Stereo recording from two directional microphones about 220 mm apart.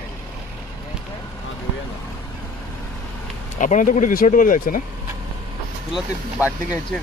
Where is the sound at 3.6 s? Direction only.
35° left (ahead or behind).